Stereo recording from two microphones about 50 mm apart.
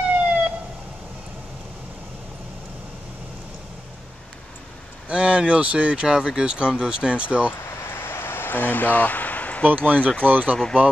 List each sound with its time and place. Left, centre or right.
0.1 s emergency vehicle: right
5.0 s speech: right
7.8 s a sound: left
9.7 s speech: right
9.9 s speech: left
10.2 s speech: right